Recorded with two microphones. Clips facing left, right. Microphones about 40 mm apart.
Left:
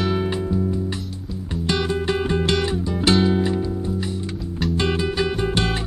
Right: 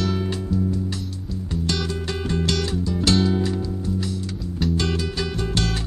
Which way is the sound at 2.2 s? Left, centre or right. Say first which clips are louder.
Left 3 dB; left.